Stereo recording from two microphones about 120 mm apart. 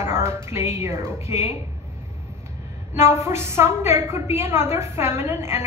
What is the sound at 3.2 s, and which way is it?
A woman's voice, 20° right (ahead or behind).